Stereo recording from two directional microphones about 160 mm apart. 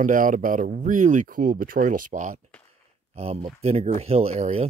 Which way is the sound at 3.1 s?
40° right (ahead or behind).